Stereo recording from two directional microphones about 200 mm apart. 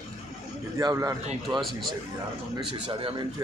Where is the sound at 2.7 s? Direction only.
25° right (ahead or behind).